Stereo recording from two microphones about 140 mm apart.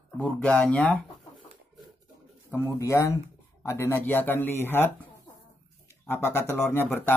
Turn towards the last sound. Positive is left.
turn(degrees=15)  # may be behind; listen again after turning